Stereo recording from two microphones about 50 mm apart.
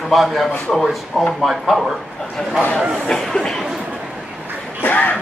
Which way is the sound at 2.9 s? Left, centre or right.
Centre.